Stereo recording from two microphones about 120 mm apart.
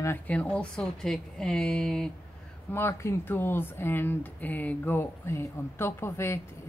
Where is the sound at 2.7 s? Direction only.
20° left (ahead or behind).